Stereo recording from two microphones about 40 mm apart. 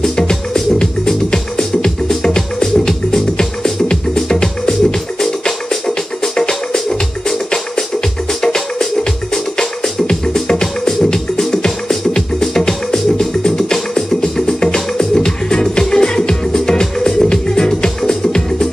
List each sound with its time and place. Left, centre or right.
0.1 s music: centre
9.3 s music: centre